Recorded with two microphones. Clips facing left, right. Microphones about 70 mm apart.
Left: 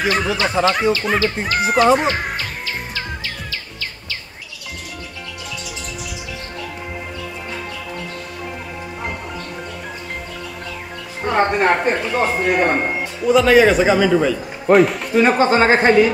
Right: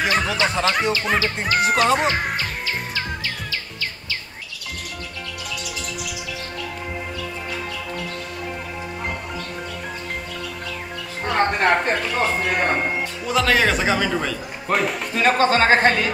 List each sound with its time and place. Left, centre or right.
0.0 s speech: centre
11.2 s speech: centre
15.1 s speech: centre